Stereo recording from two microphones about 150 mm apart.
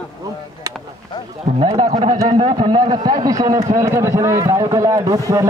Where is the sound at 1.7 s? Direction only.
40° right (ahead or behind).